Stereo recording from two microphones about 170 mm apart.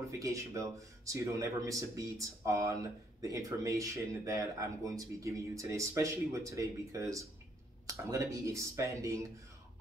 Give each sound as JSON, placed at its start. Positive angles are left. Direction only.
{"t": 0.2, "sound": "speech", "side_deg": -20}